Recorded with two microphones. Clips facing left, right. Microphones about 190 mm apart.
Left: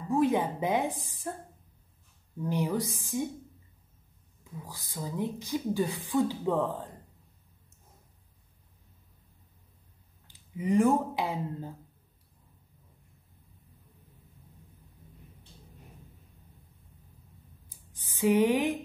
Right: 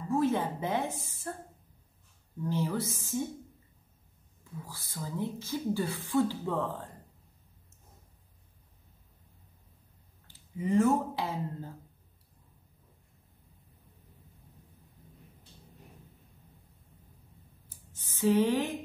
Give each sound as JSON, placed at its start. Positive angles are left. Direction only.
{"t": 0.1, "sound": "speech", "side_deg": 15}
{"t": 2.5, "sound": "speech", "side_deg": 15}
{"t": 4.6, "sound": "speech", "side_deg": 15}
{"t": 10.2, "sound": "speech", "side_deg": 15}
{"t": 17.6, "sound": "a sound", "side_deg": 15}